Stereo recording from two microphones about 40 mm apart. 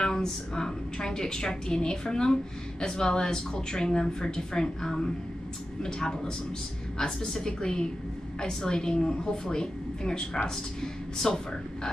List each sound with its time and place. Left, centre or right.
0.0 s a woman's voice: centre